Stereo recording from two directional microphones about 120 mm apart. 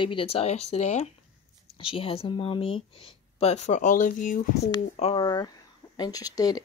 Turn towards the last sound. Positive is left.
turn(degrees=30)  # may be behind; listen again after turning